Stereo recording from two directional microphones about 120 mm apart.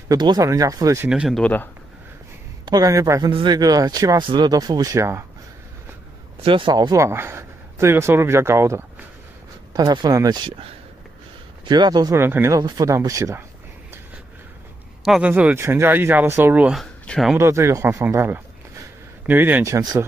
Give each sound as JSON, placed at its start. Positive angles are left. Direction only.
{"t": 0.1, "sound": "speech", "side_deg": -35}
{"t": 1.0, "sound": "speech", "side_deg": -10}
{"t": 1.3, "sound": "speech", "side_deg": 10}
{"t": 2.6, "sound": "speech", "side_deg": -30}
{"t": 3.3, "sound": "speech", "side_deg": -40}
{"t": 6.4, "sound": "speech", "side_deg": -45}
{"t": 6.7, "sound": "speech", "side_deg": -30}
{"t": 9.8, "sound": "speech", "side_deg": -35}
{"t": 11.6, "sound": "speech", "side_deg": -35}
{"t": 12.2, "sound": "speech", "side_deg": -20}
{"t": 12.5, "sound": "speech", "side_deg": -30}
{"t": 15.0, "sound": "speech", "side_deg": -10}
{"t": 16.7, "sound": "speech", "side_deg": 5}
{"t": 17.4, "sound": "speech", "side_deg": -25}